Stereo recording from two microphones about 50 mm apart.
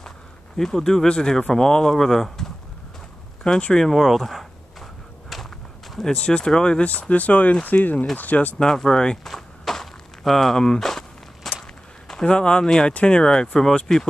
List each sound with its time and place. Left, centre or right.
0.6 s speech: centre
3.8 s speech: centre; by 8.5 s left
8.5 s speech: centre
9.3 s walk: centre
12.1 s speech: centre